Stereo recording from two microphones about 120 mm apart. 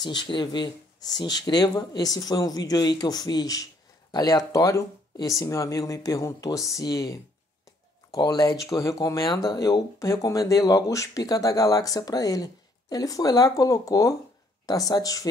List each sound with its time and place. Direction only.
0.0 s speech: 35° left (ahead or behind)